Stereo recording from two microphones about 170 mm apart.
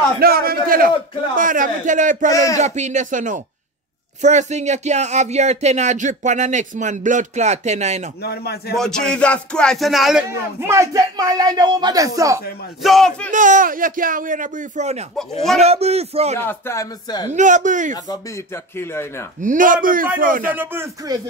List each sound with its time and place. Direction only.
0.2 s a sound: 60° right (ahead or behind)
1.3 s speech: 50° right (ahead or behind)
2.3 s speech: 20° left (ahead or behind)
2.6 s speech: 45° right (ahead or behind)
8.2 s a man's voice: 70° left (ahead or behind)
8.7 s speech: 5° left (ahead or behind)
10.3 s speech: 15° right (ahead or behind)
12.8 s speech: centre (ahead or behind)
13.3 s a man's voice: 50° right (ahead or behind)
16.3 s speech: 15° left (ahead or behind)
17.3 s speech: 45° right (ahead or behind)
17.9 s speech: 25° left (ahead or behind)
19.4 s speech: 50° right (ahead or behind)
20.5 s speech: 15° right (ahead or behind)